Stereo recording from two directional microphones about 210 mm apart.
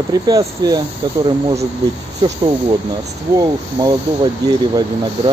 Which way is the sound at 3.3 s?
15° right (ahead or behind).